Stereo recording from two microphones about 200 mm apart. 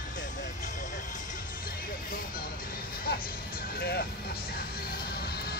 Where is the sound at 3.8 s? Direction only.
50° left (ahead or behind).